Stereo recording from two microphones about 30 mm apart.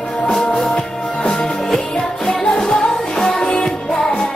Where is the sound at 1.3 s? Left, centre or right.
Centre.